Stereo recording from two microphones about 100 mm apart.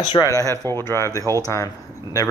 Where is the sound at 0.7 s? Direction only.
25° left (ahead or behind).